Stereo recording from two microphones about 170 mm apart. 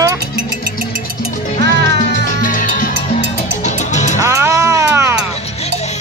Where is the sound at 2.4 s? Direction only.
55° left (ahead or behind).